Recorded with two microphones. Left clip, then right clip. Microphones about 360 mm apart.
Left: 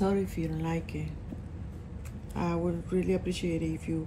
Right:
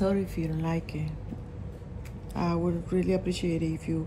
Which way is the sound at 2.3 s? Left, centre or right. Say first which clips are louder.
Right 2 dB; centre.